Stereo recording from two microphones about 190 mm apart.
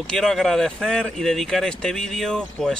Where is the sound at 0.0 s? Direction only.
5° left (ahead or behind).